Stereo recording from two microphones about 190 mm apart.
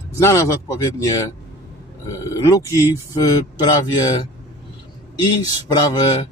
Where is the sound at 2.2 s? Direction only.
15° left (ahead or behind).